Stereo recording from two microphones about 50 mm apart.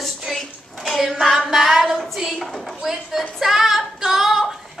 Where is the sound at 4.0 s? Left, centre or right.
Centre.